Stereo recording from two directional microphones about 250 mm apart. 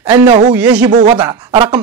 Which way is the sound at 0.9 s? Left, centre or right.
Right.